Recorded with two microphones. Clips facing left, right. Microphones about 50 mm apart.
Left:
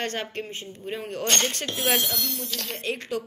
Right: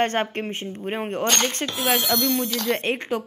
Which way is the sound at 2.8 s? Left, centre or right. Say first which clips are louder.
Right 4 dB; right.